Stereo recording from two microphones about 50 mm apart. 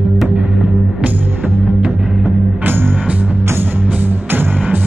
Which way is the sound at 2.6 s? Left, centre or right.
Right.